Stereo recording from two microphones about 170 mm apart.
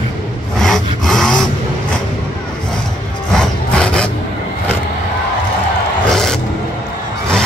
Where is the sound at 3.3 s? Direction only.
5° left (ahead or behind).